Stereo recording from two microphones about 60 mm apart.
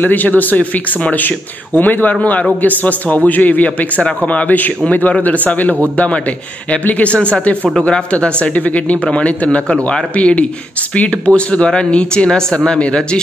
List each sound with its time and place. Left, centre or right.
0.0 s speech: left